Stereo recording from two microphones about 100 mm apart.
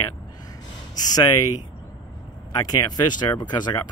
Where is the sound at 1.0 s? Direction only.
40° left (ahead or behind).